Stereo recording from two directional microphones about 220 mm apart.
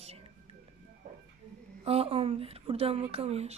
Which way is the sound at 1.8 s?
25° right (ahead or behind).